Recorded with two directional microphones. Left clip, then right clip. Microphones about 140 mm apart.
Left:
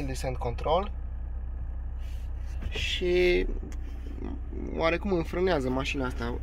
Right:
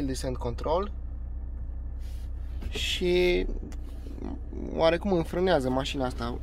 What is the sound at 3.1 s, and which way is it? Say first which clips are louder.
Speech: left 1 dB; 10° right (ahead or behind).